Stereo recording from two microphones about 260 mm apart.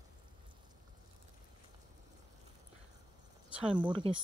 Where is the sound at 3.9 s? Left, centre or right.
Centre.